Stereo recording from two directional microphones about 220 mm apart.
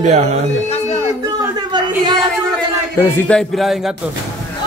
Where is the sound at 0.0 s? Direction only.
30° right (ahead or behind).